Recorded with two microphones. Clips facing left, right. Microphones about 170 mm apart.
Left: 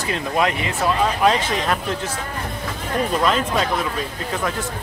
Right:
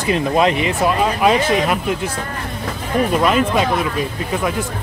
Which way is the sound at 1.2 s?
10° right (ahead or behind).